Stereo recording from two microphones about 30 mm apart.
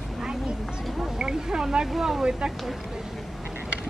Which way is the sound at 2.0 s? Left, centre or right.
Centre.